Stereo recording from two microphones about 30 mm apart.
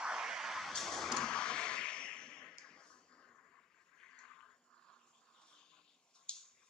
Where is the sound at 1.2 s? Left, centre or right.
Left.